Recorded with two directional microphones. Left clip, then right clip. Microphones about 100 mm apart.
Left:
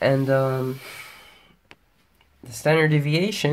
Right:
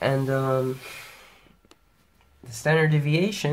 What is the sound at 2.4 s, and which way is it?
Speech, 90° left.